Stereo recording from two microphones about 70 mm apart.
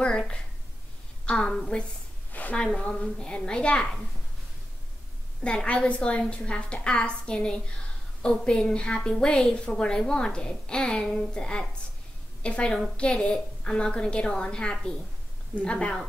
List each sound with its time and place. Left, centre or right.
0.0 s a woman's voice: centre
5.4 s a woman's voice: centre